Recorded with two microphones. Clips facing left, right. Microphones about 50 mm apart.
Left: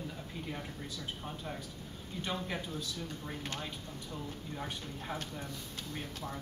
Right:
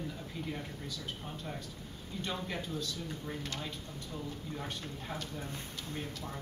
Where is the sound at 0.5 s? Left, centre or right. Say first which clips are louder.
Right 1 dB; centre.